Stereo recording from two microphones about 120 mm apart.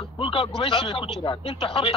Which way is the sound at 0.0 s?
50° left (ahead or behind).